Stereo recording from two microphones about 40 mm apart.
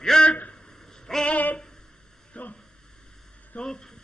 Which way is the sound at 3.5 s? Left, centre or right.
Left.